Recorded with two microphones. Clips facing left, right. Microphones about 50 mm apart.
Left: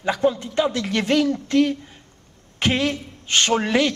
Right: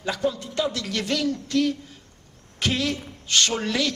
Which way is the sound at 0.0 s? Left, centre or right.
Left.